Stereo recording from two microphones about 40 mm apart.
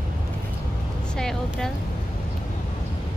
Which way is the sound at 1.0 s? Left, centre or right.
Left.